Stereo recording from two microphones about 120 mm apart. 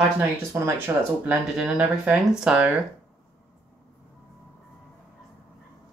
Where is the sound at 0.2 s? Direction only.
20° right (ahead or behind).